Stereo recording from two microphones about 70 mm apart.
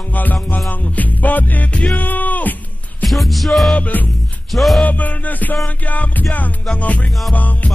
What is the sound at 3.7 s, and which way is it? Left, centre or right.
Music, left.